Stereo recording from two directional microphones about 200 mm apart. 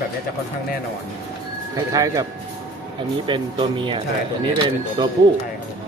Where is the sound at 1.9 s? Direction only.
15° right (ahead or behind).